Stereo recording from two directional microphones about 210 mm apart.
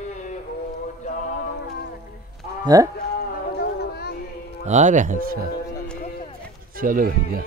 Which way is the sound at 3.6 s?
50° left (ahead or behind).